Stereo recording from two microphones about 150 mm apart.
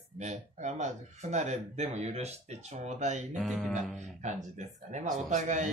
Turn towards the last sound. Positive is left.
turn(degrees=-55)  # may be behind; listen again after turning